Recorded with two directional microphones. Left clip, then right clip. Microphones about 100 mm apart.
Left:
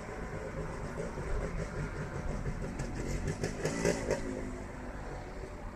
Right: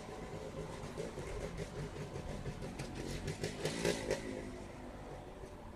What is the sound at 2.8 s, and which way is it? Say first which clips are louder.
Vehicle: left 4 dB; 35° right (ahead or behind).